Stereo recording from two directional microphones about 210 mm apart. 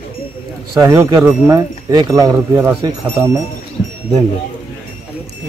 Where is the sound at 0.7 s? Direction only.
15° right (ahead or behind).